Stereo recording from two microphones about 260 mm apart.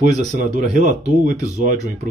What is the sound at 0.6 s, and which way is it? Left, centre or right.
Speech, right.